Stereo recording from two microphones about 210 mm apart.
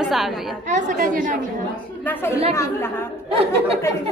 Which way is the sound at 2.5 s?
15° left (ahead or behind).